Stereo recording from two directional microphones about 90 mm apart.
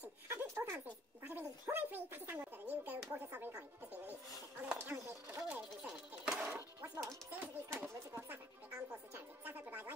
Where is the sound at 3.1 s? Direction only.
20° right (ahead or behind).